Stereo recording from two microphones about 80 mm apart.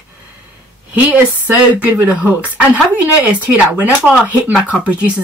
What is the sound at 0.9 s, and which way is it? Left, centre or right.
Speech, right.